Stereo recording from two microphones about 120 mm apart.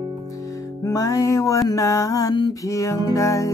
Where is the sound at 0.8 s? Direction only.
30° left (ahead or behind).